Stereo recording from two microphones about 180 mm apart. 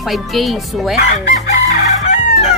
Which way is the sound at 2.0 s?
40° left (ahead or behind).